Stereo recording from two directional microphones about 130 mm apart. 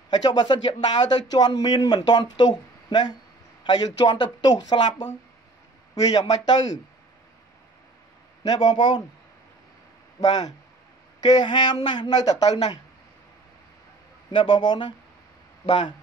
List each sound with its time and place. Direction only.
0.1 s speech: 30° left (ahead or behind)
6.0 s a man's voice: 30° left (ahead or behind)
8.5 s speech: 30° left (ahead or behind)
10.2 s speech: 30° left (ahead or behind)
14.3 s speech: 35° left (ahead or behind)
15.6 s speech: 50° left (ahead or behind)